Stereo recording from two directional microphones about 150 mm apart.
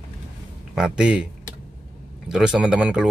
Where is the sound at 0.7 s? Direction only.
5° right (ahead or behind).